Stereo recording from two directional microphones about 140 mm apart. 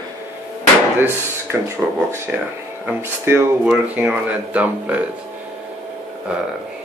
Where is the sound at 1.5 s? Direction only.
20° right (ahead or behind).